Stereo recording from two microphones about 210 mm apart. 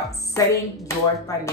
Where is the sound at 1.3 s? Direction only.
15° left (ahead or behind).